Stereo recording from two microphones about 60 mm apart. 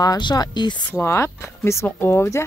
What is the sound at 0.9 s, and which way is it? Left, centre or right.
Speech, left.